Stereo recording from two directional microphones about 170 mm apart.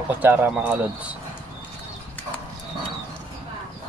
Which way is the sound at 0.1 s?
10° right (ahead or behind).